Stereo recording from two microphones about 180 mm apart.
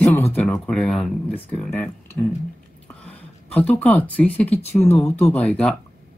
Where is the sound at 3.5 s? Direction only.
10° left (ahead or behind).